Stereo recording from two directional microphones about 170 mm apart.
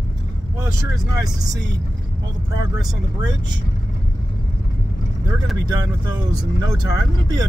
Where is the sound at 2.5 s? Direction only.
25° right (ahead or behind).